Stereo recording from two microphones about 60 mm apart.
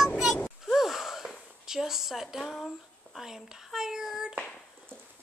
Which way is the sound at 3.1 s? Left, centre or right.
Centre.